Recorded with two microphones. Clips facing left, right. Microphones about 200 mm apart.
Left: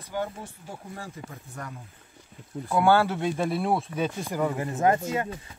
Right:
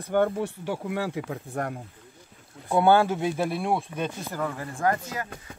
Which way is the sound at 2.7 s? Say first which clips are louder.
Right 2 dB; 20° right (ahead or behind).